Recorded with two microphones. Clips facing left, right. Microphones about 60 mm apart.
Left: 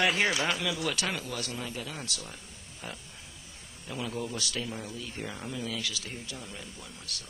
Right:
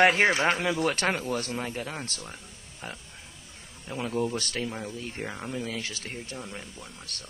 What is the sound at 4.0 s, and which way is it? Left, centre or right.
Speech, right.